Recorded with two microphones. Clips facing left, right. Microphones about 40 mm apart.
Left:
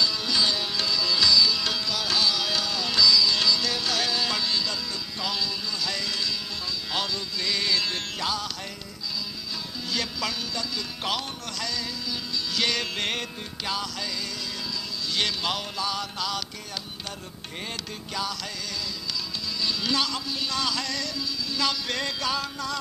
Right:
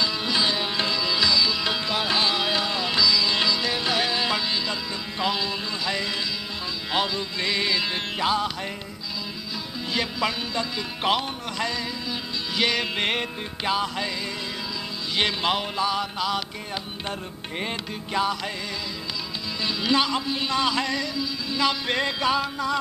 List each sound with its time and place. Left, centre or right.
0.0 s sitar: right
5.2 s music: right
9.9 s music: right
15.1 s music: right
17.6 s music: right
19.6 s music: right